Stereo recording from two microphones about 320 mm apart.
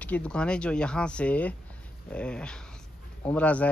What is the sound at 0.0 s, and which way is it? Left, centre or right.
Speech, centre.